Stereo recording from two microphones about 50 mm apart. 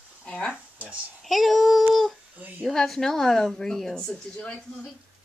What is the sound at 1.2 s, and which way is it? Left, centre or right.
Child singing, centre.